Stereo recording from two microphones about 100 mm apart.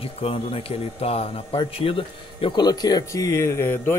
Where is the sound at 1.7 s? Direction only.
65° left (ahead or behind).